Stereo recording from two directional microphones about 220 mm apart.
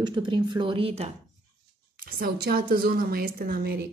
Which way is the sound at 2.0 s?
45° right (ahead or behind).